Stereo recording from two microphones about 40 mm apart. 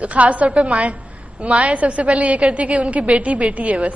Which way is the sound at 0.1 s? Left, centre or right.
Right.